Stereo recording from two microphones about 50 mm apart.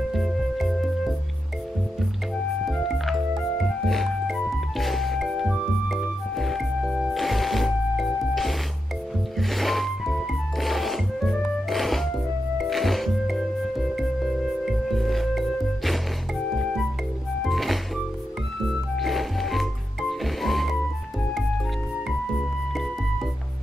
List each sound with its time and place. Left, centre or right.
0.1 s music: centre
2.6 s music: centre
17.4 s music: centre